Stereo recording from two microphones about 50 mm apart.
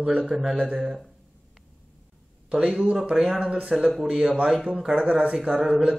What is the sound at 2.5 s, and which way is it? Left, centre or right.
Speech, centre.